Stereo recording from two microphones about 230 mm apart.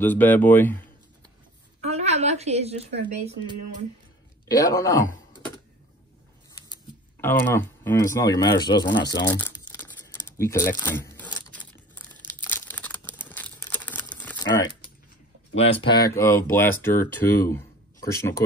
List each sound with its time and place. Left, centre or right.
0.0 s speech: centre
1.8 s a woman's voice: right
4.5 s speech: centre
6.5 s speech: centre
12.4 s crumpling: centre
15.8 s speech: centre